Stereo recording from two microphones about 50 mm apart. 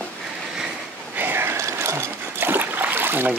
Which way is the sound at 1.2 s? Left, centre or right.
Right.